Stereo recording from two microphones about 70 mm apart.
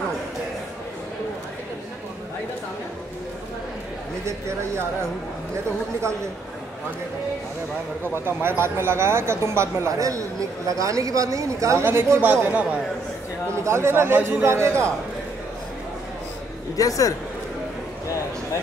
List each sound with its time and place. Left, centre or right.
4.3 s speech: right
8.3 s speech: right
11.8 s a man's voice: right
13.5 s speech: right
16.7 s a man's voice: left